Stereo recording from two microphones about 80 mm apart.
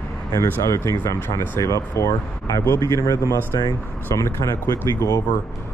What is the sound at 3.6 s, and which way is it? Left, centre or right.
Speech, left.